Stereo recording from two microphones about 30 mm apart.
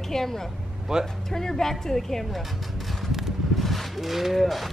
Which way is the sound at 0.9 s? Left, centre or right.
Right.